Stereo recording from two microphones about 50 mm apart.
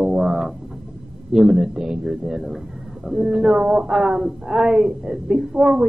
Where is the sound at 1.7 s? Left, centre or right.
Centre.